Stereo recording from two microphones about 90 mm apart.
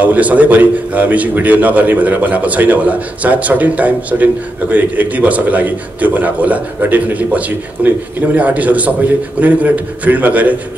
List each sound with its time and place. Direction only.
0.0 s a man's voice: 15° right (ahead or behind)